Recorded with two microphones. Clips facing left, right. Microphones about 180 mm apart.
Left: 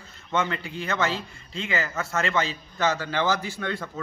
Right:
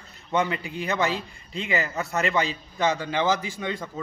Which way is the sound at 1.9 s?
15° right (ahead or behind).